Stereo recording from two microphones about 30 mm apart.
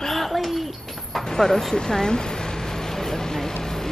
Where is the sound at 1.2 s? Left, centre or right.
Centre.